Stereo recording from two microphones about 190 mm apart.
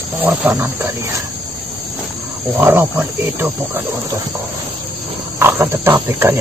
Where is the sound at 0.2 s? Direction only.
10° right (ahead or behind).